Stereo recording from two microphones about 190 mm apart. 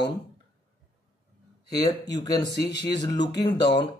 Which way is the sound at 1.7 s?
20° left (ahead or behind).